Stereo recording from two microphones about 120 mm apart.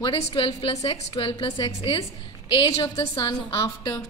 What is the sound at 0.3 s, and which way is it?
A woman's voice, 50° left (ahead or behind).